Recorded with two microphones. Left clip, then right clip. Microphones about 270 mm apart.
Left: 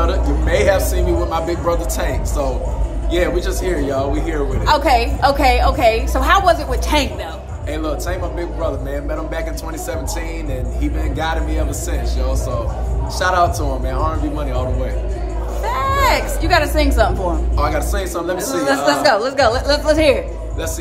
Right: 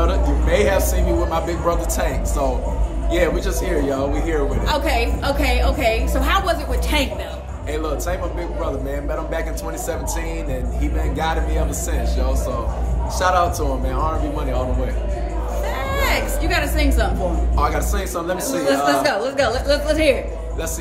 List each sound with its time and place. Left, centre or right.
0.0 s speech: centre
4.6 s a woman's voice: centre
7.7 s speech: centre
10.8 s speech: centre
13.2 s speech: centre
15.6 s a woman's voice: centre
17.6 s speech: centre
18.9 s a woman's voice: centre